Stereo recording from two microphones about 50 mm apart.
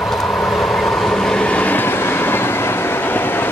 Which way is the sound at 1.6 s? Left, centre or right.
Left.